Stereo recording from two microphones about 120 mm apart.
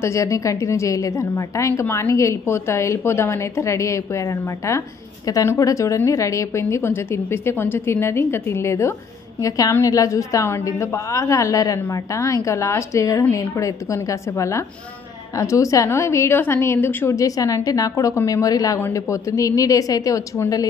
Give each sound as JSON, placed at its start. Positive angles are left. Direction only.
{"t": 0.0, "sound": "a woman's voice", "side_deg": 25}